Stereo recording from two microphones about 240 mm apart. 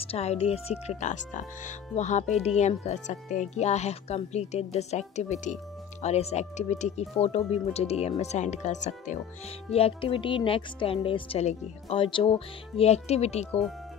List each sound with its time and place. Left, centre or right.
0.0 s speech: left